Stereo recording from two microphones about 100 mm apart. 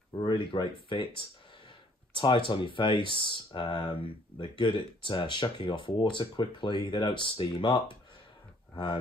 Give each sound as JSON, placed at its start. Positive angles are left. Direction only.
{"t": 0.2, "sound": "speech", "side_deg": 60}